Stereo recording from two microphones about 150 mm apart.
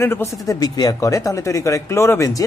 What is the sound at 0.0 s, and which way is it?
Speech, 15° left (ahead or behind).